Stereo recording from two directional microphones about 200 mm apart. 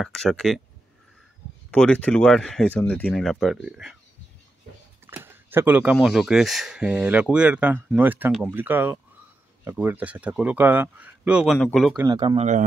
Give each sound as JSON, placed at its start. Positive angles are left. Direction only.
{"t": 0.0, "sound": "speech", "side_deg": 0}
{"t": 1.7, "sound": "speech", "side_deg": 5}
{"t": 5.0, "sound": "speech", "side_deg": -10}
{"t": 12.1, "sound": "a man's voice", "side_deg": -20}
{"t": 12.4, "sound": "speech", "side_deg": -35}